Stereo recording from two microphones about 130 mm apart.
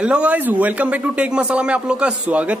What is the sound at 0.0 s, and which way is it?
A man's voice, 10° right (ahead or behind).